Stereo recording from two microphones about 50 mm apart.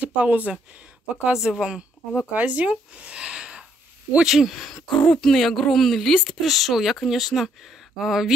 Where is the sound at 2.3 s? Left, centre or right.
Right.